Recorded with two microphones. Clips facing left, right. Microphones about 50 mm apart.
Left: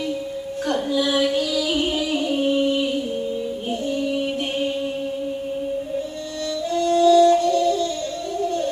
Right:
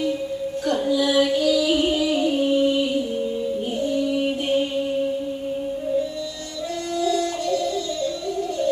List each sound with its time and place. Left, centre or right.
0.7 s female singing: left
2.2 s music: left
6.9 s music: left